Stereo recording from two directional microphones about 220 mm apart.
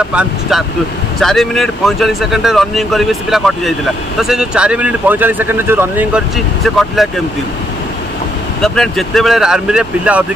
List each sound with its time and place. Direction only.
0.1 s speech: 5° right (ahead or behind)
8.6 s speech: centre (ahead or behind)